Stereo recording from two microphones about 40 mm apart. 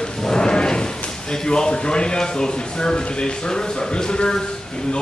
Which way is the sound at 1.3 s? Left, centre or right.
Centre.